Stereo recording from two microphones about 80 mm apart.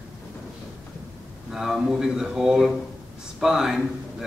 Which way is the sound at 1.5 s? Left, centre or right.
Centre.